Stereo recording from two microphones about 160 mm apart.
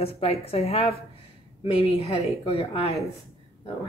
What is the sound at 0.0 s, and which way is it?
A woman's voice, 40° left (ahead or behind).